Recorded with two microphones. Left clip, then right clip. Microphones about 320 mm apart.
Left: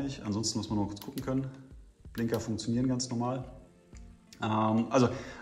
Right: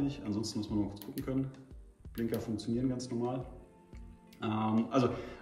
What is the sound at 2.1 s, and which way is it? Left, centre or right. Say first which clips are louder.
A man's voice: left 3 dB; centre.